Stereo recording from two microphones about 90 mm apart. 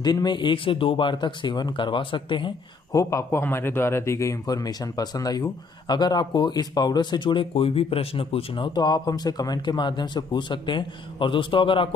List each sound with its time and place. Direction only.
0.0 s speech: 50° left (ahead or behind)
2.9 s speech: 35° left (ahead or behind); by 11.9 s 75° left (ahead or behind)